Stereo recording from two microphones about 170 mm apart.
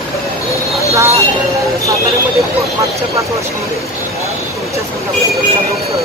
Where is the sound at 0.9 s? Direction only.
20° right (ahead or behind).